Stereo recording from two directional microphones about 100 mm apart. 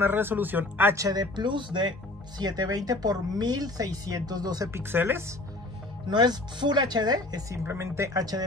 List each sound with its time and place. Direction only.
0.0 s speech: 20° right (ahead or behind)
0.9 s speech: 40° right (ahead or behind)
4.6 s speech: 25° right (ahead or behind)
6.0 s speech: 45° right (ahead or behind)